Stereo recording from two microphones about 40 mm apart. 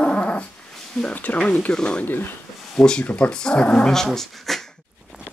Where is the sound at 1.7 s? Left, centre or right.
Left.